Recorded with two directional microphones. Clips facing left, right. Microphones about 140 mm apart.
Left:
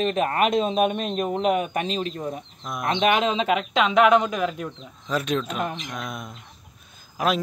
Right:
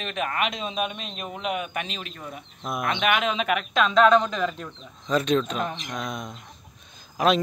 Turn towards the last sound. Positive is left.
turn(degrees=5)  # may be behind; listen again after turning